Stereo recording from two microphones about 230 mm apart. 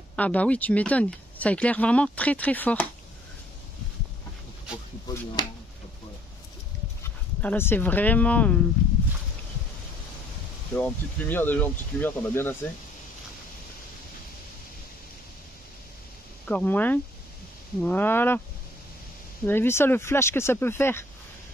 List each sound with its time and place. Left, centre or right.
0.1 s speech: centre
5.0 s speech: centre
7.0 s speech: centre
10.7 s speech: centre
16.4 s speech: centre
19.4 s speech: centre